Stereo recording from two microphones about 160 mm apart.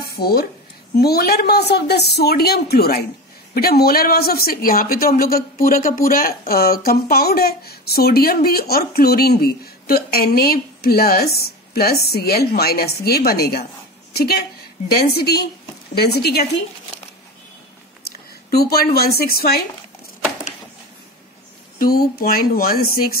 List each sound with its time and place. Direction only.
0.1 s a woman's voice: 75° left (ahead or behind)
18.5 s speech: 75° left (ahead or behind)
21.7 s speech: 65° left (ahead or behind)